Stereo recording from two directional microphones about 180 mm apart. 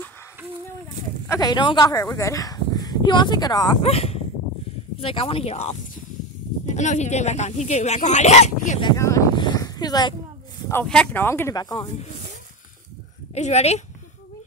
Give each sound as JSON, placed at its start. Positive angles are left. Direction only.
{"t": 1.2, "sound": "speech", "side_deg": 20}
{"t": 3.8, "sound": "speech", "side_deg": 35}
{"t": 8.8, "sound": "a sound", "side_deg": 15}
{"t": 10.7, "sound": "speech", "side_deg": 5}
{"t": 13.3, "sound": "speech", "side_deg": 40}